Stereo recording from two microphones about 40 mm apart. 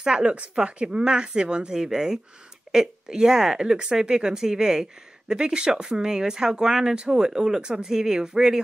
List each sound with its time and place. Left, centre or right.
0.0 s speech: centre